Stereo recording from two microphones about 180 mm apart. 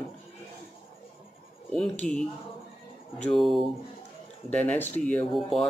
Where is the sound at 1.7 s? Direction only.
5° left (ahead or behind).